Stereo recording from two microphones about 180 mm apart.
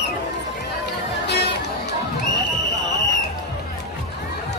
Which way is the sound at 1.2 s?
70° left (ahead or behind).